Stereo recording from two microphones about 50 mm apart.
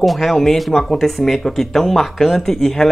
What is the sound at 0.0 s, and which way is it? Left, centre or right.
Speech, centre.